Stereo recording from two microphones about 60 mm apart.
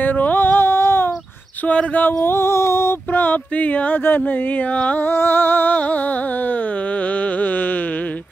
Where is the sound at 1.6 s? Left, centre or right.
Left.